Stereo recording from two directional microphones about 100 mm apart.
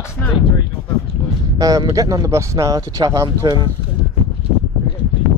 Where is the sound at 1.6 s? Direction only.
35° right (ahead or behind).